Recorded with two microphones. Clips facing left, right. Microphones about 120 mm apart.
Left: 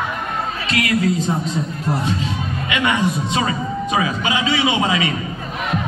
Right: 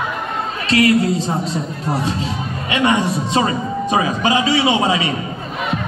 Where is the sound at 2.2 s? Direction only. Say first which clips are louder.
Even; 35° right (ahead or behind).